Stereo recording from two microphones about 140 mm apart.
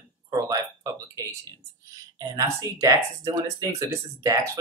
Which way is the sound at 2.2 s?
25° right (ahead or behind).